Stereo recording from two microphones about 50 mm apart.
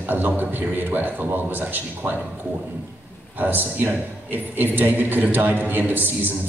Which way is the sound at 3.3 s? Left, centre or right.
Right.